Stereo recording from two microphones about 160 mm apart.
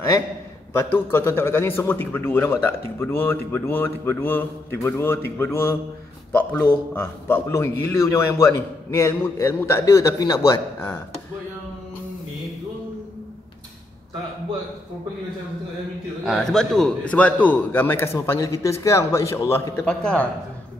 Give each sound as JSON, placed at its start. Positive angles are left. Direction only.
{"t": 0.7, "sound": "a man's voice", "side_deg": 15}
{"t": 16.3, "sound": "a man's voice", "side_deg": 5}
{"t": 19.8, "sound": "a man's voice", "side_deg": 5}